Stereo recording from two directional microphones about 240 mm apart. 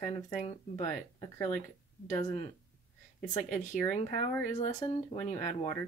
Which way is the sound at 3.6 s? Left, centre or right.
Left.